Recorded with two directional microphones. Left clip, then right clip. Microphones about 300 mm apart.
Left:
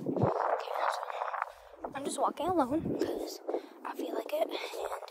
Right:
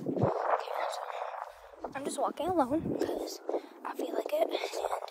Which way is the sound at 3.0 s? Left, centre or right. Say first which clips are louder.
Right 1 dB; centre.